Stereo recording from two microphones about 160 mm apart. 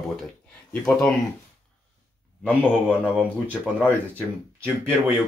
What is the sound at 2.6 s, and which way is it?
Speech, 5° right (ahead or behind).